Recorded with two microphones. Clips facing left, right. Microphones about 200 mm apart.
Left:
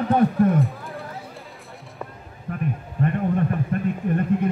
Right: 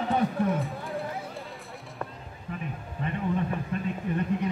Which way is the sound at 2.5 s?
50° left (ahead or behind).